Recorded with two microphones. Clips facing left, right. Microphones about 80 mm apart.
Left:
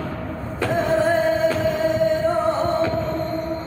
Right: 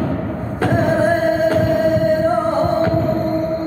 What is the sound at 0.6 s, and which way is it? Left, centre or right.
Music, right.